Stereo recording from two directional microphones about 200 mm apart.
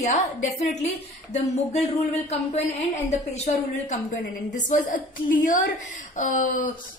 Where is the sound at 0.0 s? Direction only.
35° left (ahead or behind).